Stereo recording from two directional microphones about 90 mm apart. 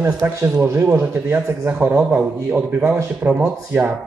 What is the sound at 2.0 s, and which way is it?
Speech, 15° right (ahead or behind).